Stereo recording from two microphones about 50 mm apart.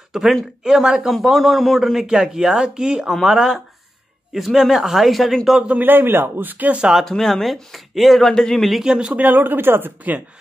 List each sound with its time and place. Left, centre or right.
0.1 s speech: centre
2.0 s speech: centre
3.1 s speech: centre
5.8 s speech: right
7.1 s speech: centre
8.3 s a man's voice: centre
8.8 s speech: centre
9.1 s speech: right